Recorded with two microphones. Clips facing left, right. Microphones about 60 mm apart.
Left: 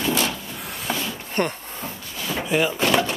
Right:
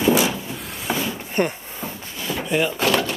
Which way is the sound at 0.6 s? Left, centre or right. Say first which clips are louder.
Right 1 dB; centre.